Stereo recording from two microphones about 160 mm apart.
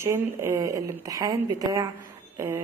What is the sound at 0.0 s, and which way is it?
A man's voice, 15° right (ahead or behind).